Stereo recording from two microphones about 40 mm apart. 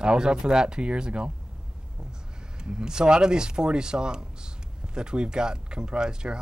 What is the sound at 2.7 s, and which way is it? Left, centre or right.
Speech, centre.